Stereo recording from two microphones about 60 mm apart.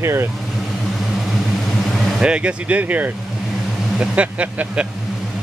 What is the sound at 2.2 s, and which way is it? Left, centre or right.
Speech, centre.